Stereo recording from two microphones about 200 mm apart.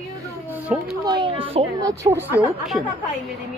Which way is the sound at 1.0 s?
20° right (ahead or behind).